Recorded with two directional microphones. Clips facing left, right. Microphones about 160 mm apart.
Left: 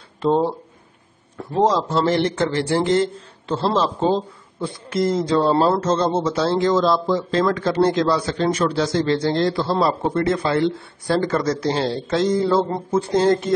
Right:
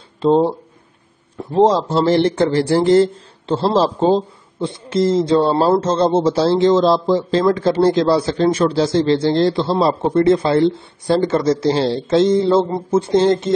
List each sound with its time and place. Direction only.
0.2 s a man's voice: 25° right (ahead or behind)
12.6 s speech: 10° right (ahead or behind)
13.0 s a man's voice: 25° right (ahead or behind)